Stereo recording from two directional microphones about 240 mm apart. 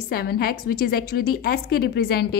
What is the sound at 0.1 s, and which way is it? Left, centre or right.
A woman's voice, left.